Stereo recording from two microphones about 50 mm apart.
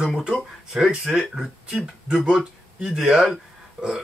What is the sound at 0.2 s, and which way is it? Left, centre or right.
Speech, centre.